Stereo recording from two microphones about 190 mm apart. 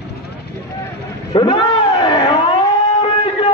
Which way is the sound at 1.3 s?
25° left (ahead or behind).